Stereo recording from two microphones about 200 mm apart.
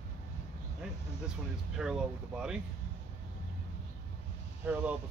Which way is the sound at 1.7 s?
5° right (ahead or behind).